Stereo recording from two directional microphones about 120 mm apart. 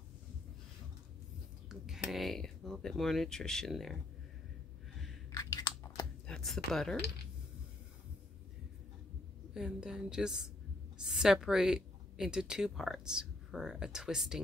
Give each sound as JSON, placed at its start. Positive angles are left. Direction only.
{"t": 1.9, "sound": "speech", "side_deg": 0}
{"t": 5.3, "sound": "a sound", "side_deg": 30}
{"t": 6.2, "sound": "speech", "side_deg": 5}
{"t": 9.5, "sound": "a woman's voice", "side_deg": -5}